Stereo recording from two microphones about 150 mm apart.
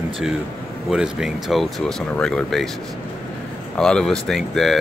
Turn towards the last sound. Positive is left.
turn(degrees=0)  # may be behind; listen again after turning